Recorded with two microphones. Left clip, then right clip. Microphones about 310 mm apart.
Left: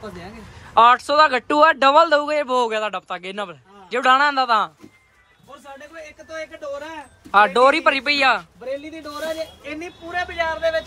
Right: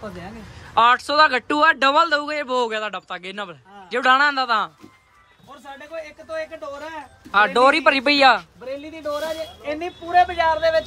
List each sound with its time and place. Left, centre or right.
0.7 s speech: centre
6.7 s speech: centre
8.4 s speech: centre
10.3 s a man's voice: right